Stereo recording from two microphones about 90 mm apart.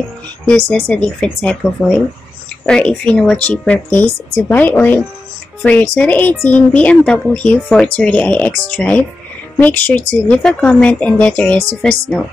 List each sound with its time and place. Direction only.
0.6 s speech: 25° left (ahead or behind)